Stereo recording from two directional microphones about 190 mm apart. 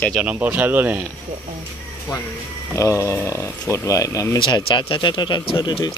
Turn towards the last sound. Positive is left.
turn(degrees=20)  # may be behind; listen again after turning